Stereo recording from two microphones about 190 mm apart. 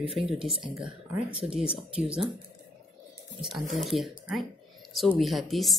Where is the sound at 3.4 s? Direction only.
Centre (ahead or behind).